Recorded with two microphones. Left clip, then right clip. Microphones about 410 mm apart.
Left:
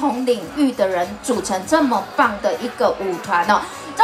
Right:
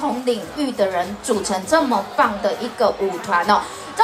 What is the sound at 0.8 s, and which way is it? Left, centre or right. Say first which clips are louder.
A woman's voice: left 1 dB; right.